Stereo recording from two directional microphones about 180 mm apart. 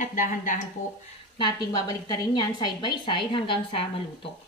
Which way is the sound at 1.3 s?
25° left (ahead or behind).